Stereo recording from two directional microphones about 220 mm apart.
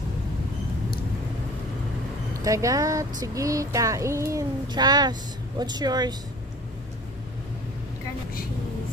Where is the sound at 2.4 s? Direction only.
15° right (ahead or behind).